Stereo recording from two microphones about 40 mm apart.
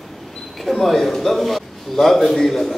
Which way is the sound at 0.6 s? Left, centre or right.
Centre.